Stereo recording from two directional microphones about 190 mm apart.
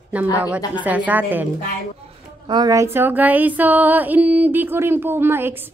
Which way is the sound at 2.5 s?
20° right (ahead or behind).